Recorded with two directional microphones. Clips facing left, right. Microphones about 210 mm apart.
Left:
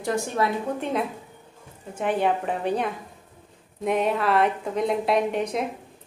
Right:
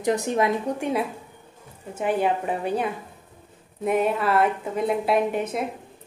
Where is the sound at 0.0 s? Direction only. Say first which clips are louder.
Right 3 dB; 20° right (ahead or behind).